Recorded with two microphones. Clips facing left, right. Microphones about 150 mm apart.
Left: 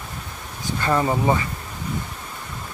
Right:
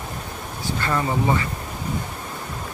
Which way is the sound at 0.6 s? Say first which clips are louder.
Left 3 dB; 20° left (ahead or behind).